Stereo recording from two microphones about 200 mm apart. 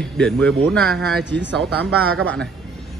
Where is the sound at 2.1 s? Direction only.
90° right.